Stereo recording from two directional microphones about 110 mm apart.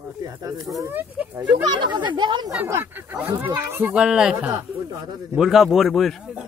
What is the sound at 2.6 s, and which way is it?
A man's voice, 20° right (ahead or behind).